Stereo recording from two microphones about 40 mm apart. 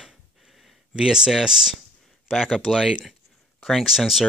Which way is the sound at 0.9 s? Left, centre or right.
Centre.